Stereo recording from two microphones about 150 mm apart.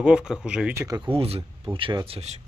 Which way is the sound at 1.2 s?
40° right (ahead or behind).